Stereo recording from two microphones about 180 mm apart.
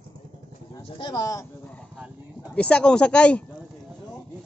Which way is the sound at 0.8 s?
25° left (ahead or behind).